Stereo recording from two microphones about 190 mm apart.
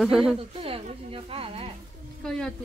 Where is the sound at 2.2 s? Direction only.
5° left (ahead or behind).